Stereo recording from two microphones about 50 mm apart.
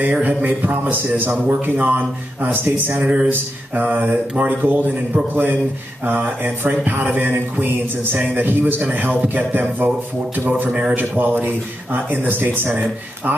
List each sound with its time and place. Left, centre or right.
0.0 s a man's voice: right
10.7 s a man's voice: right
11.0 s a man's voice: right